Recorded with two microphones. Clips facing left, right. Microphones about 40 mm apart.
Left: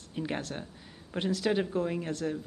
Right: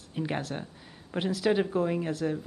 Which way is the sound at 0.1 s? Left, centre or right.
Centre.